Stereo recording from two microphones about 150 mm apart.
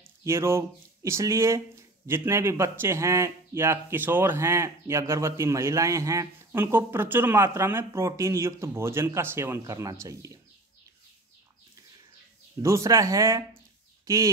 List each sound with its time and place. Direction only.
0.2 s speech: 20° right (ahead or behind)
12.6 s a man's voice: 20° right (ahead or behind)